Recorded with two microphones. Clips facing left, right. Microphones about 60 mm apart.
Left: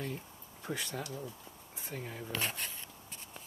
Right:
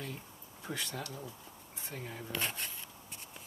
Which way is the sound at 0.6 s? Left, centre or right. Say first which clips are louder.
Left 1 dB; centre.